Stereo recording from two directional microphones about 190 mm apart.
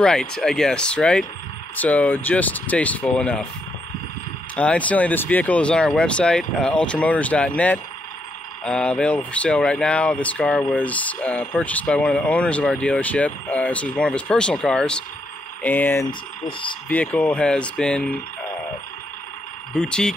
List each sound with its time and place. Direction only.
0.0 s speech: 5° left (ahead or behind)
4.6 s speech: 5° left (ahead or behind)
19.7 s speech: 5° left (ahead or behind)